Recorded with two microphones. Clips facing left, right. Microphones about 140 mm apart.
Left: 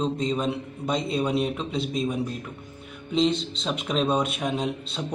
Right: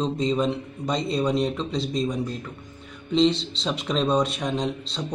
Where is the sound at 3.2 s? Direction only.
50° left (ahead or behind).